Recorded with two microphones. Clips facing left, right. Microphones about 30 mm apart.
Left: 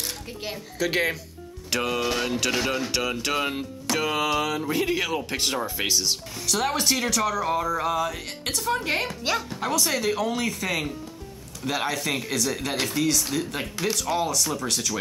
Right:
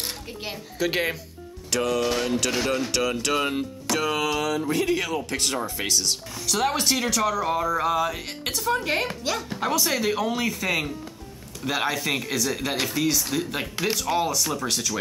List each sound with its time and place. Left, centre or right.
0.4 s speech: centre
1.7 s music: centre
2.0 s speech: centre
6.4 s speech: centre
9.5 s speech: centre